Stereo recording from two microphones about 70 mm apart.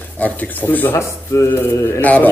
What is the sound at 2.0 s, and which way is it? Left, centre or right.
Speech, left.